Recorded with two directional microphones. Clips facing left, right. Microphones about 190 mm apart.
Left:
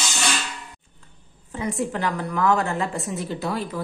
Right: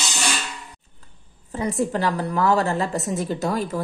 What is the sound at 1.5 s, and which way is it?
A woman's voice, 35° right (ahead or behind).